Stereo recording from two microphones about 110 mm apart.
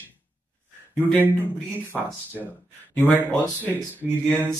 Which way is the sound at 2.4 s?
15° right (ahead or behind).